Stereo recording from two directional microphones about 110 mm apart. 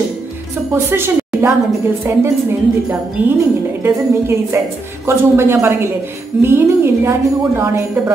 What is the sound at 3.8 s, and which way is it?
A woman's voice, 20° right (ahead or behind).